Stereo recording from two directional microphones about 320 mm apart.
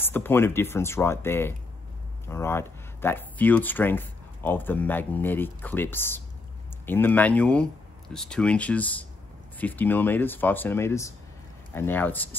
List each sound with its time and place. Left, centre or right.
0.0 s speech: centre